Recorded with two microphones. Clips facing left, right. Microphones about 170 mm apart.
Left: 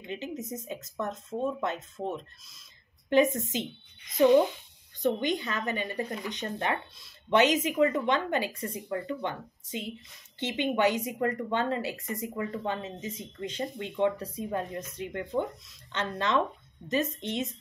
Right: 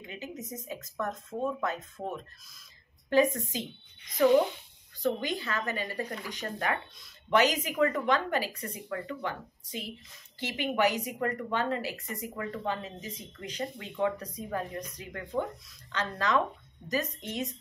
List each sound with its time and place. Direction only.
0.0 s speech: 30° left (ahead or behind)
5.0 s speech: 20° left (ahead or behind)